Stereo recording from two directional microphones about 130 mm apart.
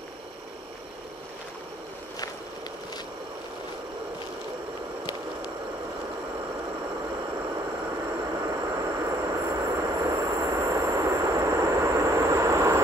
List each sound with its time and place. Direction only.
8.4 s vehicle: 25° right (ahead or behind)